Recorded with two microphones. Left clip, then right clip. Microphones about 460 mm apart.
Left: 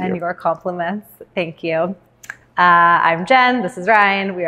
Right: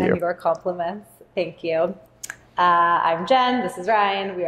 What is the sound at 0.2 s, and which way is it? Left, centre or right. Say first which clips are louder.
A woman's voice: left 2 dB; left.